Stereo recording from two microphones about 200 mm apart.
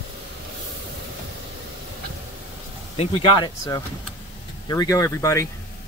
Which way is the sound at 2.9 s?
25° left (ahead or behind).